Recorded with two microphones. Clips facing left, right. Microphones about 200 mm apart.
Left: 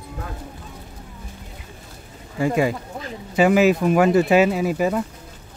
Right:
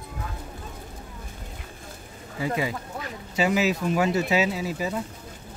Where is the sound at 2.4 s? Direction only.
50° left (ahead or behind).